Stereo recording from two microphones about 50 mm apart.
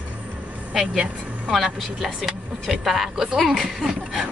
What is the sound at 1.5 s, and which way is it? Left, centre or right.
Speech, centre.